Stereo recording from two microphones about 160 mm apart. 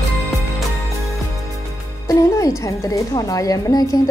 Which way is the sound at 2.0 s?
20° left (ahead or behind).